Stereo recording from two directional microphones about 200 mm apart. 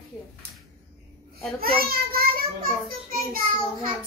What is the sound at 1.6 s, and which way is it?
A child's voice, 50° right (ahead or behind).